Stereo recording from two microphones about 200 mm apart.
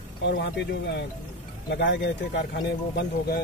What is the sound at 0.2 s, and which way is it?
Speech, 60° left (ahead or behind).